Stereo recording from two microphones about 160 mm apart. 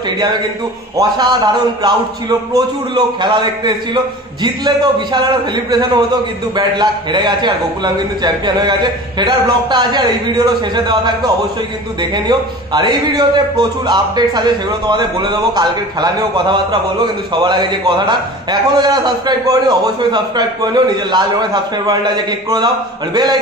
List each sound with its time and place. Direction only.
0.9 s a man's voice: 25° right (ahead or behind)